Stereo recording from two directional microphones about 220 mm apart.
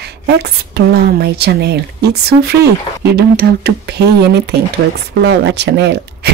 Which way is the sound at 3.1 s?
45° right (ahead or behind).